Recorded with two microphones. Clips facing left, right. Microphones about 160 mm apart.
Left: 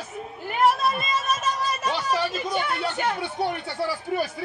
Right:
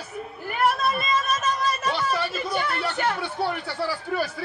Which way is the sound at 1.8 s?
15° left (ahead or behind).